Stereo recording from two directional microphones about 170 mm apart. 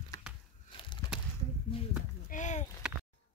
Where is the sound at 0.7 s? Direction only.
30° left (ahead or behind).